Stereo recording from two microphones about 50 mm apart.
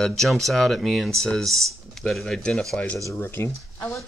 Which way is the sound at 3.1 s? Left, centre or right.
Left.